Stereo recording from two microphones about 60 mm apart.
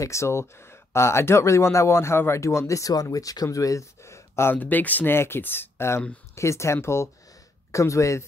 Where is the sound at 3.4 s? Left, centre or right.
Left.